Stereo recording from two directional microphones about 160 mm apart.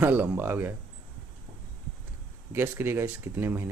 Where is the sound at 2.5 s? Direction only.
15° right (ahead or behind).